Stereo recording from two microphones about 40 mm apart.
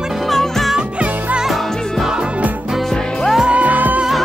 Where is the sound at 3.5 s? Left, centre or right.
Right.